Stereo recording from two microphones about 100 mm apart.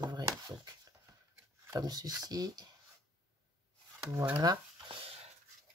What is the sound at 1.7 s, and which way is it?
Speech, 40° right (ahead or behind).